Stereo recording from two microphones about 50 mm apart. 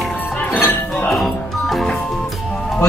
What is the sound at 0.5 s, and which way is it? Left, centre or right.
Chink, left.